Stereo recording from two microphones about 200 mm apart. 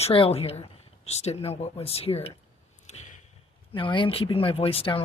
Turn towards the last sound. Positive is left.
turn(degrees=25)  # may be behind; listen again after turning